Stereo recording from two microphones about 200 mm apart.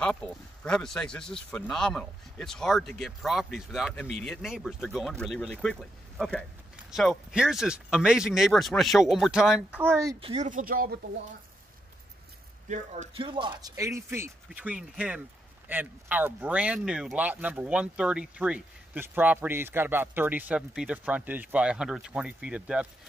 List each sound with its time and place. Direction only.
0.0 s speech: 5° left (ahead or behind); by 10.1 s 15° right (ahead or behind)
10.2 s speech: 35° right (ahead or behind)
12.6 s speech: 35° right (ahead or behind); by 22.8 s 5° right (ahead or behind)